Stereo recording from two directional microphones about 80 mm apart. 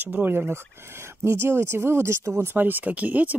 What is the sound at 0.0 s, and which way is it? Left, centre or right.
Speech, right.